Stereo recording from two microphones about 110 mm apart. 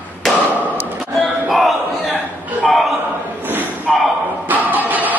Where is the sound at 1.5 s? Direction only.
Centre (ahead or behind).